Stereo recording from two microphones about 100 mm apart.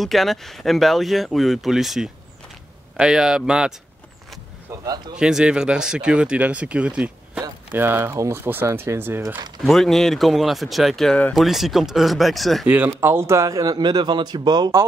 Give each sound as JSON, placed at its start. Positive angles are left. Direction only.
{"t": 0.0, "sound": "speech", "side_deg": 0}
{"t": 4.8, "sound": "a man's voice", "side_deg": -40}
{"t": 5.1, "sound": "speech", "side_deg": -5}
{"t": 7.7, "sound": "speech", "side_deg": -20}
{"t": 9.7, "sound": "speech", "side_deg": 5}
{"t": 12.6, "sound": "a man's voice", "side_deg": -15}